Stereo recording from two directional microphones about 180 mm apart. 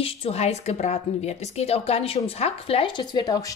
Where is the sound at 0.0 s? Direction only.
30° left (ahead or behind).